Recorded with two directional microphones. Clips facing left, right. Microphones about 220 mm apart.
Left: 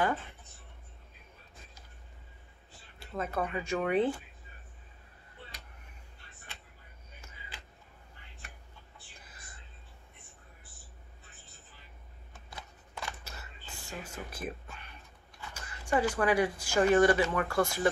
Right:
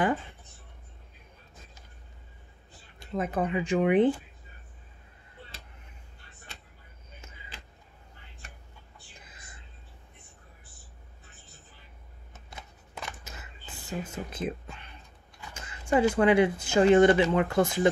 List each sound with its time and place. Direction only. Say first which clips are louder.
3.0 s speech: right 5 dB; 15° right (ahead or behind)
12.3 s shuffling cards: right 1 dB; 20° right (ahead or behind)
15.5 s a woman's voice: right 5 dB; 20° right (ahead or behind)